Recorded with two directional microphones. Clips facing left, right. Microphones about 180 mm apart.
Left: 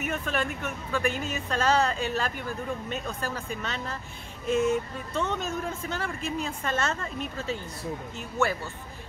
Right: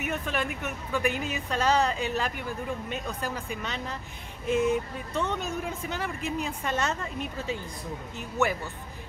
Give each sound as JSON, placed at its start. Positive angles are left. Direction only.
{"t": 0.3, "sound": "speech", "side_deg": -15}